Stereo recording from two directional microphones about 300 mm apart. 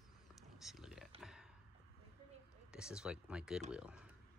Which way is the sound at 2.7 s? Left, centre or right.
Centre.